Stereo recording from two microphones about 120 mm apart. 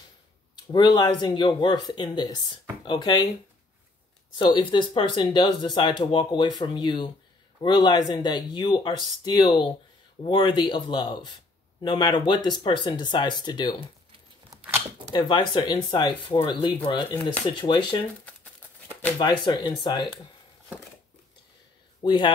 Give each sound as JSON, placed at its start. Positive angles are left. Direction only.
{"t": 0.7, "sound": "speech", "side_deg": 35}
{"t": 4.4, "sound": "speech", "side_deg": 40}
{"t": 14.5, "sound": "a sound", "side_deg": -30}
{"t": 15.1, "sound": "speech", "side_deg": 40}
{"t": 17.1, "sound": "speech", "side_deg": 15}
{"t": 17.5, "sound": "speech", "side_deg": 40}
{"t": 19.1, "sound": "speech", "side_deg": 35}
{"t": 22.0, "sound": "speech", "side_deg": 40}